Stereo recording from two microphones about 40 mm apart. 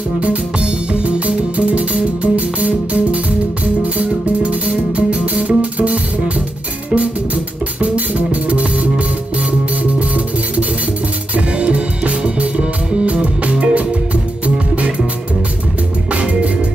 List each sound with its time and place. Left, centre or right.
0.2 s music: right
4.9 s music: right
7.8 s music: right